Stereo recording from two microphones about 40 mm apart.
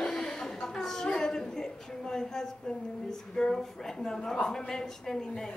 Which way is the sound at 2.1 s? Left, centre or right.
Centre.